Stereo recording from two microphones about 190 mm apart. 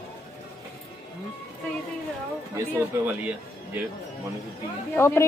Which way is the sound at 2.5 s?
10° right (ahead or behind).